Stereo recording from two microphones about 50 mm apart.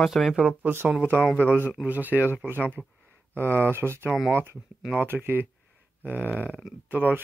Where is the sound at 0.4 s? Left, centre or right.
Right.